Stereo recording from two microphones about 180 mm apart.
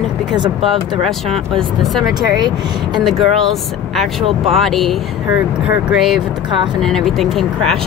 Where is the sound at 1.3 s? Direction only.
Centre (ahead or behind).